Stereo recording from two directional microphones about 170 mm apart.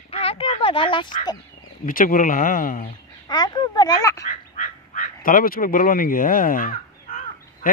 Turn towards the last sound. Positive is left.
turn(degrees=55)  # may be behind; listen again after turning